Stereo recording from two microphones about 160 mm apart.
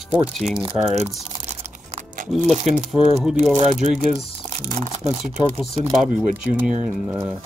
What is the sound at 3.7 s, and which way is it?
Speech, 50° right (ahead or behind).